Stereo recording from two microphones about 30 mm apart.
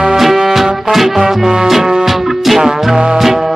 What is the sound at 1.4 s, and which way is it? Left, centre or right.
Music, right.